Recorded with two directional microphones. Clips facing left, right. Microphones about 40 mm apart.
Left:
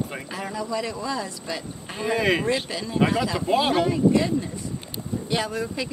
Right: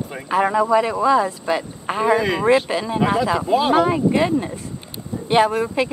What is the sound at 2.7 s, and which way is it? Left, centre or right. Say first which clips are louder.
Speech: right 8 dB; right.